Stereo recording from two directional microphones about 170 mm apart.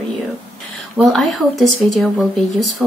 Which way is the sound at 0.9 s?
Centre (ahead or behind).